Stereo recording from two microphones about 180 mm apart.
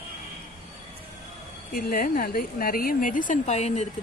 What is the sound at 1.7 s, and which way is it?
A woman's voice, 55° left (ahead or behind).